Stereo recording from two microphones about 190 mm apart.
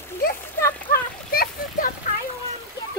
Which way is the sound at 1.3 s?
50° left (ahead or behind).